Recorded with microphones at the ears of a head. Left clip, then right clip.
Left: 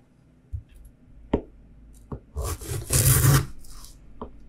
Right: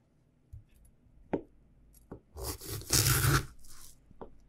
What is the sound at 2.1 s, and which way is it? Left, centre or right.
Filing, left.